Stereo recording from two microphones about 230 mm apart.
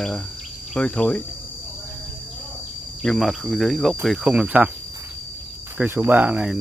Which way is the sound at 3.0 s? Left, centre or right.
Centre.